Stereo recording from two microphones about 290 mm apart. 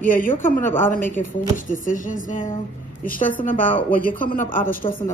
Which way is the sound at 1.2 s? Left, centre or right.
Left.